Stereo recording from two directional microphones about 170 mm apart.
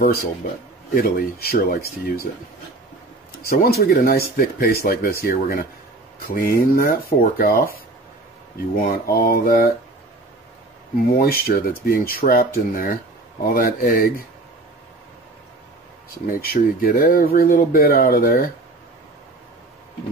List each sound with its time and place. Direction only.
0.0 s speech: 60° left (ahead or behind)
3.4 s speech: 60° left (ahead or behind)
8.8 s speech: 60° left (ahead or behind)
11.1 s speech: 60° left (ahead or behind)
16.3 s speech: 60° left (ahead or behind)